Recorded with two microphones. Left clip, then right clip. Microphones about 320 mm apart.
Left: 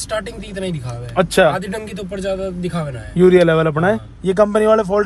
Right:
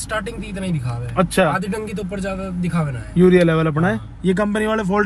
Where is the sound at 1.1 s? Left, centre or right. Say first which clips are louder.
Left 4 dB; left.